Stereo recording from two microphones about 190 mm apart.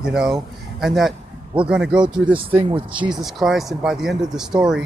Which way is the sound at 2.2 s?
25° right (ahead or behind).